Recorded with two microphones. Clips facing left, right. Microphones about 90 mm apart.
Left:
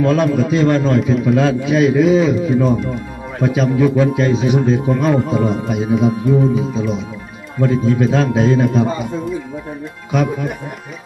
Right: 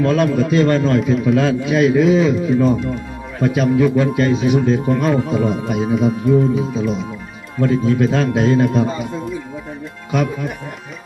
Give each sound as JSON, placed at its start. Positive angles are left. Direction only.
{"t": 0.0, "sound": "a man's voice", "side_deg": 0}
{"t": 10.1, "sound": "a man's voice", "side_deg": 0}